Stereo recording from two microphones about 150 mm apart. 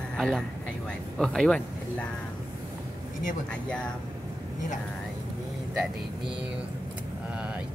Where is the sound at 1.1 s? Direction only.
5° left (ahead or behind).